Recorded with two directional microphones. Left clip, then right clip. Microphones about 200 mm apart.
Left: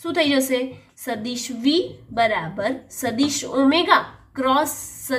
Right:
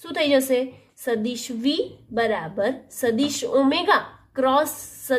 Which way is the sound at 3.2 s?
45° right (ahead or behind).